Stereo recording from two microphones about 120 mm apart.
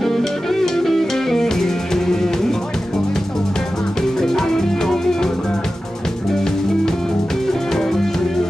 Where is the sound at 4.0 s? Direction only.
5° left (ahead or behind).